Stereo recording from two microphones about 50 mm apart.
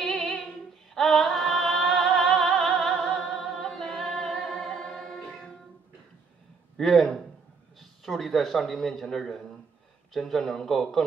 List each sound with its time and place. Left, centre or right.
0.0 s female singing: centre
0.9 s music: centre
6.8 s a man's voice: centre